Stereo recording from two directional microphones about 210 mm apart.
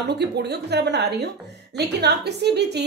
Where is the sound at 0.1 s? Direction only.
50° right (ahead or behind).